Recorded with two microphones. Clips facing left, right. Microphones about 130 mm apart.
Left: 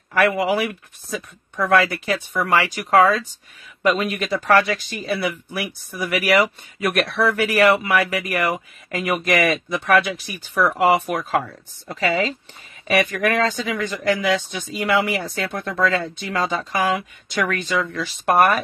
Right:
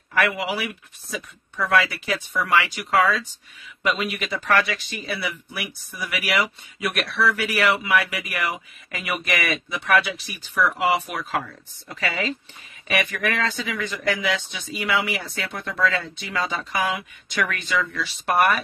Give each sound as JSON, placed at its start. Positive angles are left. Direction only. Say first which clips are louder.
{"t": 0.2, "sound": "speech", "louder": "left 6 dB", "side_deg": 50}